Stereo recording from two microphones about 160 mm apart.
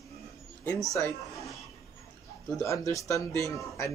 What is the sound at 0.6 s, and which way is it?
Speech, 20° left (ahead or behind).